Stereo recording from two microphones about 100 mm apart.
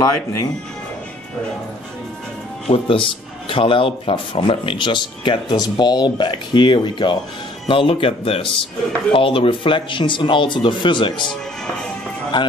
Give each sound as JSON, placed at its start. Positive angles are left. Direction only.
{"t": 0.0, "sound": "speech", "side_deg": 35}
{"t": 2.7, "sound": "speech", "side_deg": 60}
{"t": 7.6, "sound": "speech", "side_deg": 65}